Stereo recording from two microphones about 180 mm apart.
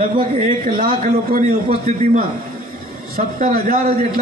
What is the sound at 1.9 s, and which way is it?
Speech, 40° right (ahead or behind).